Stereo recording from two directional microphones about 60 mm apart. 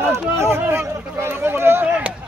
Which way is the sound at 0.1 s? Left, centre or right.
Right.